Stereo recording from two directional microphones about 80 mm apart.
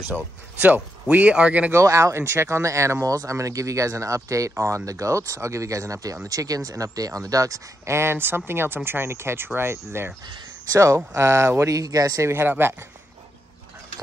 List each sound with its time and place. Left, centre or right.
0.6 s speech: right
1.7 s speech: right
10.7 s speech: right
12.3 s speech: right